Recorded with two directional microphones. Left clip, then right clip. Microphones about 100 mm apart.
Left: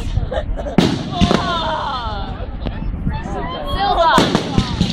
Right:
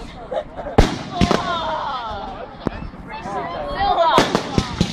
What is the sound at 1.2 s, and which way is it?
Fireworks, 15° right (ahead or behind).